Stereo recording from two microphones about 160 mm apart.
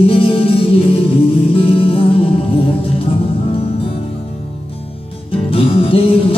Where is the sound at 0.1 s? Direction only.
35° left (ahead or behind).